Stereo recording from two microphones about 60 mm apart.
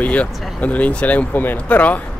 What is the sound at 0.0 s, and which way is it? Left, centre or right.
Speech, left.